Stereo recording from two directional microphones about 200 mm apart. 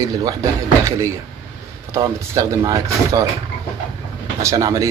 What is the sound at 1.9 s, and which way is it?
Speech, 15° right (ahead or behind).